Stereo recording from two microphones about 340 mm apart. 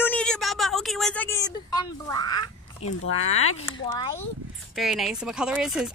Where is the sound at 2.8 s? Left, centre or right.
Left.